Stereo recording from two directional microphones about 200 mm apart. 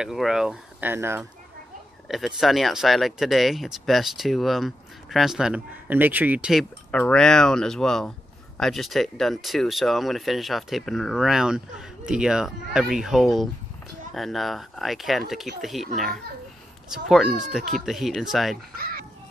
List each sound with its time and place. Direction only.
0.0 s speech: centre (ahead or behind)
2.0 s speech: centre (ahead or behind)
6.9 s speech: 5° left (ahead or behind)
16.9 s speech: centre (ahead or behind)
18.8 s children playing: 45° right (ahead or behind)